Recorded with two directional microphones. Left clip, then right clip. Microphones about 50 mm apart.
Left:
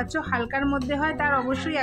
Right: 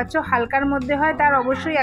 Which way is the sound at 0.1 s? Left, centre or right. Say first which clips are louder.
Right 9 dB; centre.